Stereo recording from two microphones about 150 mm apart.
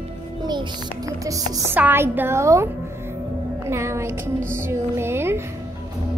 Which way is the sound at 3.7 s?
20° right (ahead or behind).